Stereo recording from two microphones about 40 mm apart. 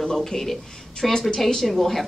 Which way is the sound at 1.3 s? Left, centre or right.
Centre.